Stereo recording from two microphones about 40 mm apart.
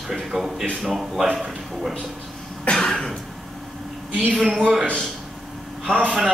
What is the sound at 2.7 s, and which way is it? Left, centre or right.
Cough, left.